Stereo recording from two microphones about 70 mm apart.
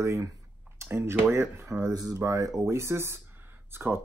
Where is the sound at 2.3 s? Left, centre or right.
Right.